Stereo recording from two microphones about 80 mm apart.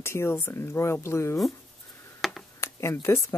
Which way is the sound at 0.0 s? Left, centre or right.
Left.